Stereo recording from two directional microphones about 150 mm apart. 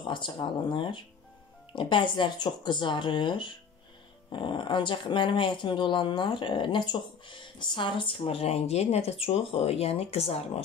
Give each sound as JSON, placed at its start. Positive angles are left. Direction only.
{"t": 0.0, "sound": "speech", "side_deg": 30}